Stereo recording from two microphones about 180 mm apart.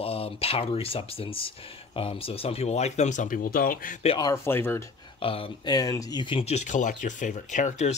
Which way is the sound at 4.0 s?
30° left (ahead or behind).